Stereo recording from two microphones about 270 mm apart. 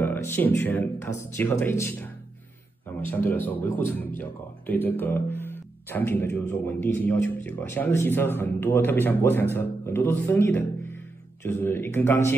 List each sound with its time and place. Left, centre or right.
0.0 s a sound: centre
0.6 s speech: centre
3.1 s speech: centre